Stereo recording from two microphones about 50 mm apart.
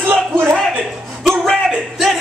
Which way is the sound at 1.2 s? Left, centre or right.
Centre.